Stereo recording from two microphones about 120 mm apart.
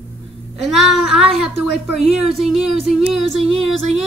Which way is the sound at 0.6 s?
Centre (ahead or behind).